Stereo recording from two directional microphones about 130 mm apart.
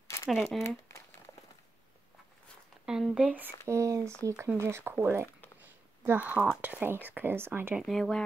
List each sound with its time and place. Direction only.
0.3 s speech: centre (ahead or behind)
0.7 s crumpling: 20° left (ahead or behind)
2.8 s speech: 5° right (ahead or behind)
3.6 s speech: 25° right (ahead or behind)
5.6 s a sound: 15° right (ahead or behind)
6.6 s speech: 15° right (ahead or behind)
7.8 s speech: 5° left (ahead or behind)